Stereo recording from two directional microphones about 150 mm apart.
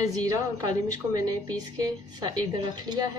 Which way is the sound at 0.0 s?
25° right (ahead or behind).